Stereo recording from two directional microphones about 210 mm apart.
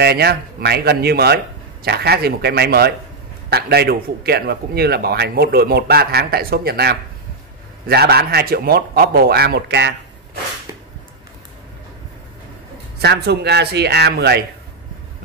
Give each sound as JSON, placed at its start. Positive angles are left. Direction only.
{"t": 0.0, "sound": "a man's voice", "side_deg": -50}
{"t": 13.0, "sound": "a man's voice", "side_deg": -50}